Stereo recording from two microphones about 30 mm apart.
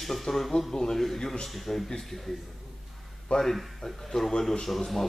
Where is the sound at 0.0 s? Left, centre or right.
Centre.